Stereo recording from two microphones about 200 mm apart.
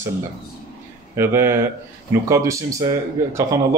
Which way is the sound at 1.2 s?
15° right (ahead or behind).